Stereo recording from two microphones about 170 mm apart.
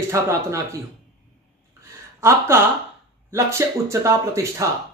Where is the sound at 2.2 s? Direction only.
15° right (ahead or behind).